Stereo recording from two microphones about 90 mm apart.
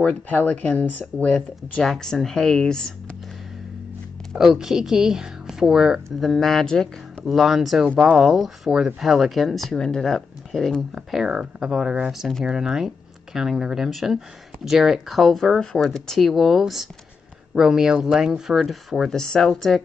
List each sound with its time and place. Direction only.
0.0 s speech: 15° left (ahead or behind)
4.4 s speech: 5° right (ahead or behind)
11.0 s speech: 5° right (ahead or behind)